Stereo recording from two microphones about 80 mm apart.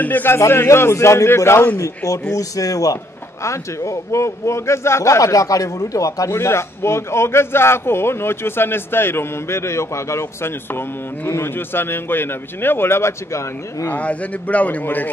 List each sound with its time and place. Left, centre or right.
0.0 s a man's voice: left
0.4 s a man's voice: left
2.3 s a man's voice: left
13.8 s a man's voice: centre